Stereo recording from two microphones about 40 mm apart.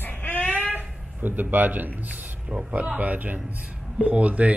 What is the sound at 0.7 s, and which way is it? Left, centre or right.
Speech, right.